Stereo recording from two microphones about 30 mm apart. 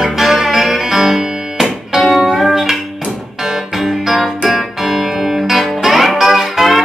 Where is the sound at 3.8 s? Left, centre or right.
Centre.